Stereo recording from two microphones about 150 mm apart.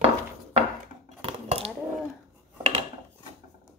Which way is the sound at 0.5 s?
45° right (ahead or behind).